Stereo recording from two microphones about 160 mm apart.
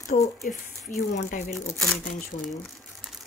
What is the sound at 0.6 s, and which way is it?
Speech, 50° left (ahead or behind).